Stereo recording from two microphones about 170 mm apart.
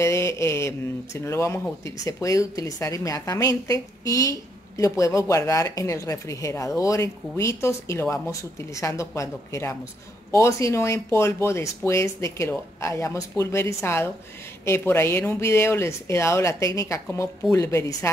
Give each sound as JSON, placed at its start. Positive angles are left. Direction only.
{"t": 0.0, "sound": "speech", "side_deg": 15}